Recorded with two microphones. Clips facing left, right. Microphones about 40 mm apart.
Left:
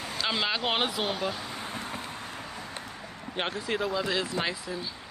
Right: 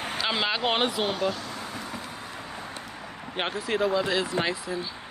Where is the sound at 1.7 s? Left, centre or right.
Left.